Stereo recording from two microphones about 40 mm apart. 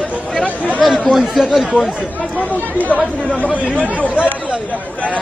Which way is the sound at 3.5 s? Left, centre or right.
Right.